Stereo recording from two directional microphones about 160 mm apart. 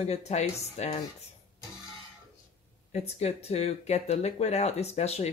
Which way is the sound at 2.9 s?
40° left (ahead or behind).